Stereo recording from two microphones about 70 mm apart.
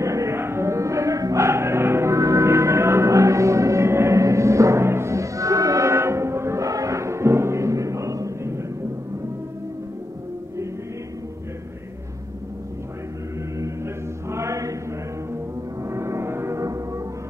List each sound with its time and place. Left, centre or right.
0.0 s music: right
14.3 s chant: right
15.3 s music: right